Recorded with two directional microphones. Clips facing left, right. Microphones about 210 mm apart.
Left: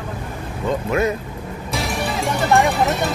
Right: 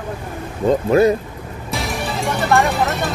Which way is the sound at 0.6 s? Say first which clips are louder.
Right 6 dB; 35° right (ahead or behind).